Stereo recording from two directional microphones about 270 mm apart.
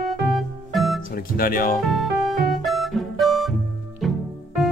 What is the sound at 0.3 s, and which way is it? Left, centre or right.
Music, centre.